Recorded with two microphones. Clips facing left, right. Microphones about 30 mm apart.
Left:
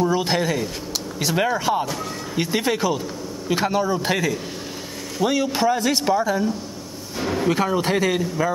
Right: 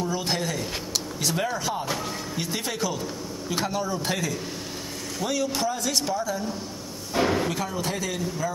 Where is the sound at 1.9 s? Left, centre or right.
Centre.